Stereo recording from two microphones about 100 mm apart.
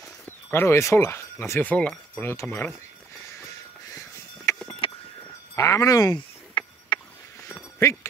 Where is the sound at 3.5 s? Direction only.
30° left (ahead or behind).